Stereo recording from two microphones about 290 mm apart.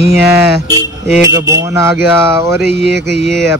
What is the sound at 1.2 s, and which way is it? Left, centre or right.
Speech, centre.